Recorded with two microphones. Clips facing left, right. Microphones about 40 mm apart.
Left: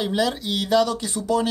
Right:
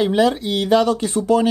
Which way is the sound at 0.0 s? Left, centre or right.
Right.